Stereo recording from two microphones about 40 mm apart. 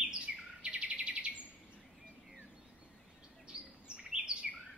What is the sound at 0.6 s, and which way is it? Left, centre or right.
Chirp, right.